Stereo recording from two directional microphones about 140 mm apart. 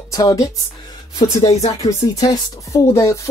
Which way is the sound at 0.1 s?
25° left (ahead or behind).